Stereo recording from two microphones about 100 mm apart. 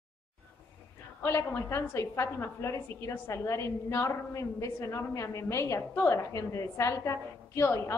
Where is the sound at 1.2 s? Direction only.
25° left (ahead or behind).